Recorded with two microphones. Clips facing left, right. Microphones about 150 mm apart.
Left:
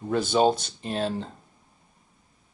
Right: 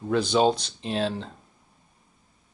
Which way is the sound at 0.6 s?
50° left (ahead or behind).